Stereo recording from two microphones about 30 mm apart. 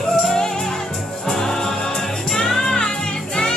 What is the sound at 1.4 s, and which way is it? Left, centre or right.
Music, centre.